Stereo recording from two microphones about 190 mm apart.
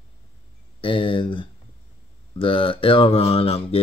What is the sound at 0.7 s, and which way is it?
Speech, 25° left (ahead or behind).